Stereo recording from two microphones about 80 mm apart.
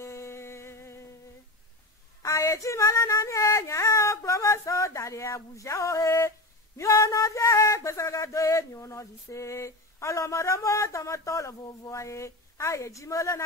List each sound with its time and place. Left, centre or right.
0.0 s music: left
2.2 s child singing: left
6.8 s a sound: left